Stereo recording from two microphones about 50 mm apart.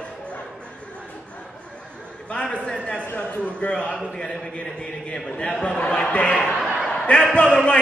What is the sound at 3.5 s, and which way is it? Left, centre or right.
Speech, left.